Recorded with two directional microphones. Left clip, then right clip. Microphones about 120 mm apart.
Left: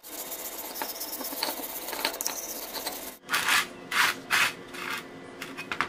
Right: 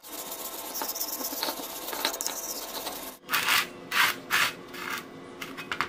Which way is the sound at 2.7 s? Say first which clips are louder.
Even; 5° left (ahead or behind).